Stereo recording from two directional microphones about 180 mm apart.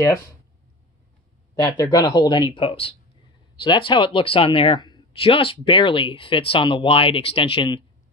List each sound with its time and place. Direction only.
1.5 s speech: 20° left (ahead or behind)